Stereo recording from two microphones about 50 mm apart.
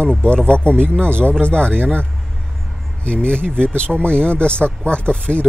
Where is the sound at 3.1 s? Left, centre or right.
Left.